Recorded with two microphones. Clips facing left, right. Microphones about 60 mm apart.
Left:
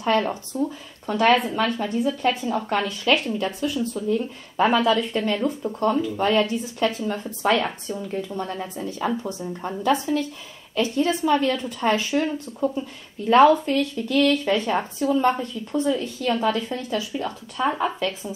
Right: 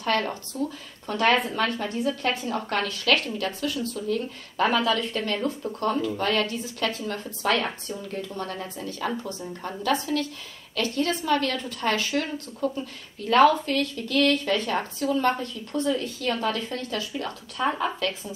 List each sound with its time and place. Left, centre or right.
0.0 s a woman's voice: centre
17.9 s a woman's voice: centre